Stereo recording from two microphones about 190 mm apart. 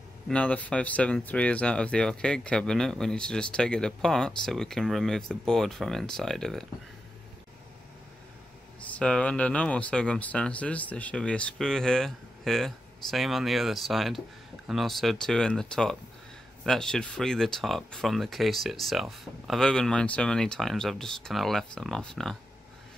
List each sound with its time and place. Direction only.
0.3 s speech: 5° left (ahead or behind)
8.9 s speech: 5° left (ahead or behind)